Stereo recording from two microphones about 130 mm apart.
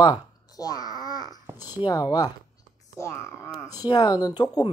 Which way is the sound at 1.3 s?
20° right (ahead or behind).